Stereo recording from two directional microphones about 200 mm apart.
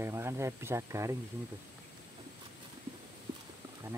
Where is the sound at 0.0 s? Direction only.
15° right (ahead or behind).